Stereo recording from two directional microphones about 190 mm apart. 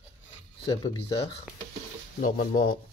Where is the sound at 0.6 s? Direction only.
25° left (ahead or behind).